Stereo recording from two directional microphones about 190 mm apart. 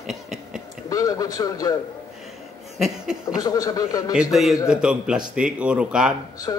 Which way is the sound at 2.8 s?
5° right (ahead or behind).